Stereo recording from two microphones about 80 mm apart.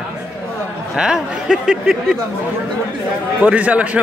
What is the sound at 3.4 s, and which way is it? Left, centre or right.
Speech, centre.